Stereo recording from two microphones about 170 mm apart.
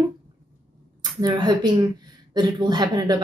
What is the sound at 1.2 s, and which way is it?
A woman's voice, 25° right (ahead or behind).